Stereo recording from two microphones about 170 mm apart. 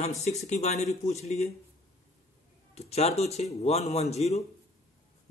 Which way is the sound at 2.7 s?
40° left (ahead or behind).